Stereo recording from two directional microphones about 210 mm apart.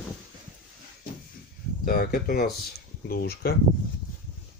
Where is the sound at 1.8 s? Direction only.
45° left (ahead or behind).